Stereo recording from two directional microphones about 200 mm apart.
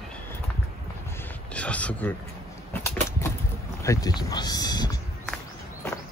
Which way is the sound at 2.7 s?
15° left (ahead or behind).